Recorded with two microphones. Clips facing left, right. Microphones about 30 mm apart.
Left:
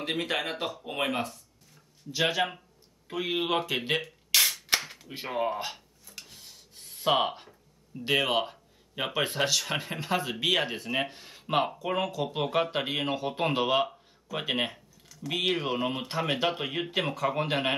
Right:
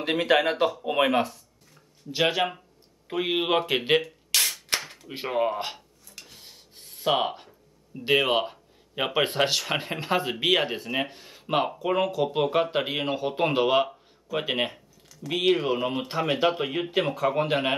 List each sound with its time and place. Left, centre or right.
0.2 s speech: right
4.3 s a sound: centre
5.0 s speech: right
5.3 s speech: centre
6.2 s filing: centre
6.8 s rub: centre
8.0 s speech: centre
10.3 s speech: centre